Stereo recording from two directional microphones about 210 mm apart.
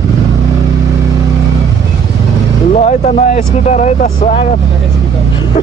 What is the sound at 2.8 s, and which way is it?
Speech, 35° left (ahead or behind).